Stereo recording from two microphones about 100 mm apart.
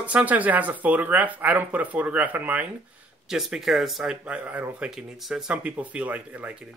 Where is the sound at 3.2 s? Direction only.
5° right (ahead or behind).